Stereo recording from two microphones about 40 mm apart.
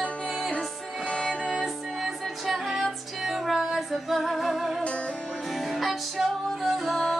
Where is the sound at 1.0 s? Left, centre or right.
Left.